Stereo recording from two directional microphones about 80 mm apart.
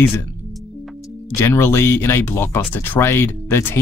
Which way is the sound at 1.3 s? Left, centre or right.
Left.